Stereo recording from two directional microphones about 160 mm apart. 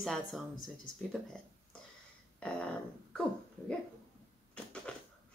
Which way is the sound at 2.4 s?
5° left (ahead or behind).